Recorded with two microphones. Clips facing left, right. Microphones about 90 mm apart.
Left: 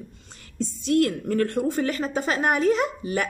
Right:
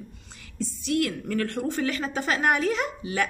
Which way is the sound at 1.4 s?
20° left (ahead or behind).